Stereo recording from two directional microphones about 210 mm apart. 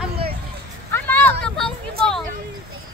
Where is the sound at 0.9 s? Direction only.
10° left (ahead or behind).